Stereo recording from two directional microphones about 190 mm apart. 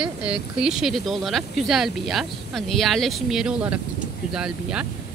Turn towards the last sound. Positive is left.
turn(degrees=-5)  # may be behind; listen again after turning